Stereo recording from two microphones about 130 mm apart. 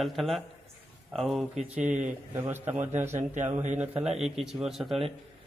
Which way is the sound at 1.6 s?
10° right (ahead or behind).